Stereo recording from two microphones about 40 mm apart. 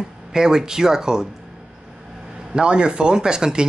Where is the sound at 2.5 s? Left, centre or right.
Right.